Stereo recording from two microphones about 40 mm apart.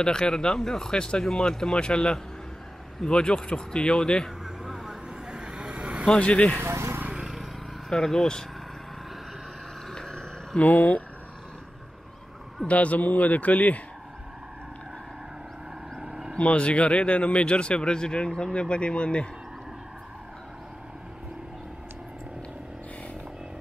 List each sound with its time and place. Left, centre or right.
0.0 s speech: centre
4.6 s vehicle: centre
5.3 s vehicle: right
6.1 s speech: left
7.9 s speech: centre
9.9 s a sound: centre
10.6 s a man's voice: left
12.6 s a man's voice: left
16.0 s vehicle: centre
16.3 s speech: left